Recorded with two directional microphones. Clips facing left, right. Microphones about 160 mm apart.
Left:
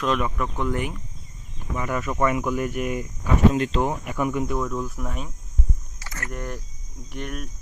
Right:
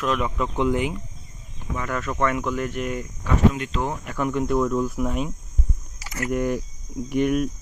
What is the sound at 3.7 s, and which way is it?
Speech, 10° left (ahead or behind).